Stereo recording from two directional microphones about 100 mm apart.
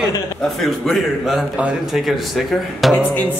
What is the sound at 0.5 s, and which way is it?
A man's voice, centre (ahead or behind).